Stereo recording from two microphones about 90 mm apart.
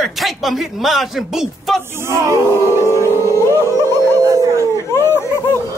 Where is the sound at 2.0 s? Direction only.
30° right (ahead or behind).